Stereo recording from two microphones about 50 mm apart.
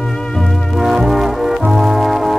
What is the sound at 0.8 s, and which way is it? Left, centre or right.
Brass instrument, centre.